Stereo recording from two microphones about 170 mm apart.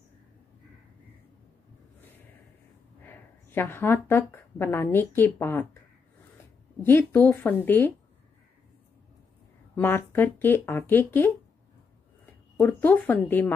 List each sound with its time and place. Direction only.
3.0 s speech: 10° left (ahead or behind)
6.8 s speech: 10° left (ahead or behind)
9.8 s speech: 10° left (ahead or behind)
12.5 s speech: 10° left (ahead or behind)